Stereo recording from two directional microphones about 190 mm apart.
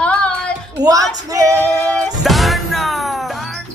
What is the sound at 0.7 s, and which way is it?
Speech, 20° right (ahead or behind).